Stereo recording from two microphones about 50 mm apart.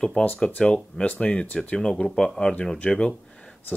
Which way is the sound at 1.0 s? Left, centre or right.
Left.